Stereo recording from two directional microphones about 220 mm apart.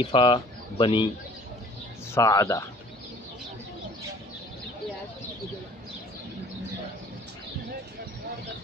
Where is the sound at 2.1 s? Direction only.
15° left (ahead or behind).